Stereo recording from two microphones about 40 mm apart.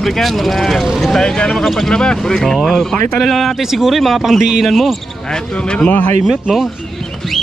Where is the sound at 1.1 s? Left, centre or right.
Centre.